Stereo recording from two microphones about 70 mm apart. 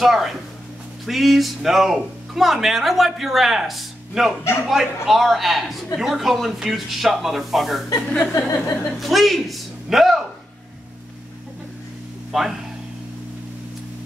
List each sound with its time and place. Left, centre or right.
0.0 s speech: centre
8.1 s a sound: left
8.9 s a man's voice: centre
12.3 s speech: centre